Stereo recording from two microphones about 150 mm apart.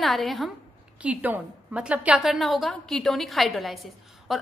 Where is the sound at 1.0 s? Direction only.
10° right (ahead or behind).